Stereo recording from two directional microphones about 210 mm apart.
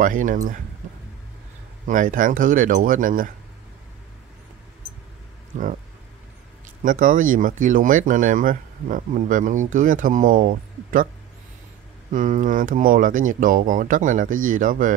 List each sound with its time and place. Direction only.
0.0 s speech: 40° right (ahead or behind)
1.9 s speech: 40° right (ahead or behind)
6.8 s speech: 40° right (ahead or behind)
12.1 s speech: 35° right (ahead or behind)